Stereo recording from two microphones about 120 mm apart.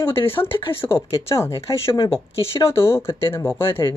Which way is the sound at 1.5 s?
45° left (ahead or behind).